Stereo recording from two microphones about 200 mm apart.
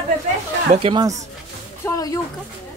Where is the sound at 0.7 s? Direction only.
25° right (ahead or behind).